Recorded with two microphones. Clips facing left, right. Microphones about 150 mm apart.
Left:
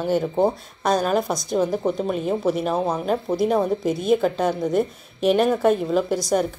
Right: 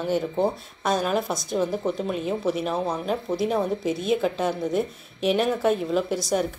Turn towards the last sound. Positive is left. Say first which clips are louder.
# left 3 dB
turn(degrees=0)  # may be behind; listen again after turning